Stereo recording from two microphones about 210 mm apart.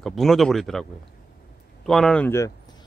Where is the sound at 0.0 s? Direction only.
Centre (ahead or behind).